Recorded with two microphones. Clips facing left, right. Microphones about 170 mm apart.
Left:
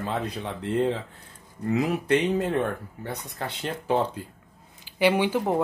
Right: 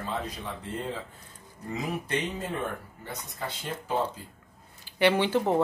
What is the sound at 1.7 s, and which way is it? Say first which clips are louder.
Speech: left 9 dB; 65° left (ahead or behind).